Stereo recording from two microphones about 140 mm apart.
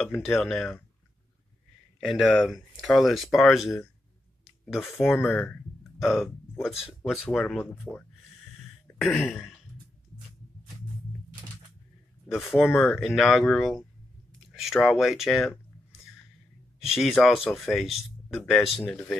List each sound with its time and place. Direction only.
0.2 s speech: centre (ahead or behind)
2.0 s speech: centre (ahead or behind)
4.9 s speech: 15° left (ahead or behind)
8.9 s speech: centre (ahead or behind)
12.3 s speech: centre (ahead or behind)
16.8 s speech: centre (ahead or behind)